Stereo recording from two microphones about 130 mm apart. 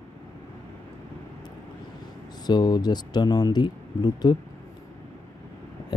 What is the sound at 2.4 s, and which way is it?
Speech, 35° left (ahead or behind).